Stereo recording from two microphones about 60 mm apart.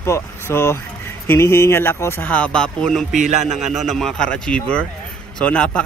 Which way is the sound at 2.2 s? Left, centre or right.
Left.